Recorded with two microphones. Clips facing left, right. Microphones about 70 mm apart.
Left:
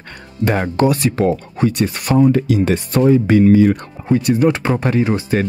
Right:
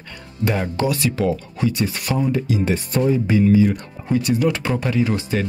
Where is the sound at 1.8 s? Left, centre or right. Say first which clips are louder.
Left 7 dB; left.